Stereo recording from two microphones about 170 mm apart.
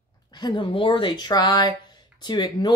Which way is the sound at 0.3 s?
25° left (ahead or behind).